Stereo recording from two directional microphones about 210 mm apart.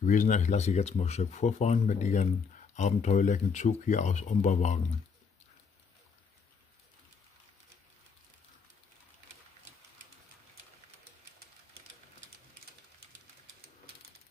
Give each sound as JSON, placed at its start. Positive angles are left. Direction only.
{"t": 0.0, "sound": "speech", "side_deg": 40}